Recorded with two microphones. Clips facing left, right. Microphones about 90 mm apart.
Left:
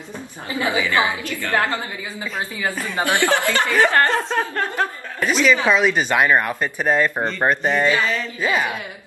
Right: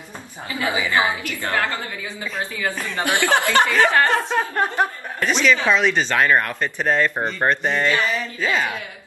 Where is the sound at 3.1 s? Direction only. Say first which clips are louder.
Even; 20° right (ahead or behind).